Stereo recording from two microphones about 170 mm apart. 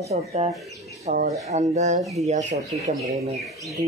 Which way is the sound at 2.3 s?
45° right (ahead or behind).